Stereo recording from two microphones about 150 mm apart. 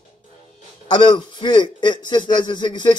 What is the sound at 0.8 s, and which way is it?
A man's voice, 30° left (ahead or behind).